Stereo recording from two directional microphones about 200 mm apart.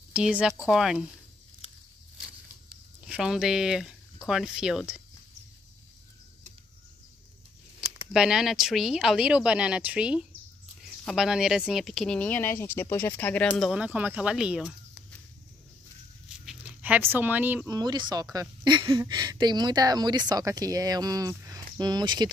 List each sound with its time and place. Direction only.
0.1 s speech: 5° right (ahead or behind)
3.1 s speech: 5° right (ahead or behind)
8.1 s speech: 5° right (ahead or behind)
16.4 s speech: 5° right (ahead or behind)
17.7 s speech: 20° right (ahead or behind)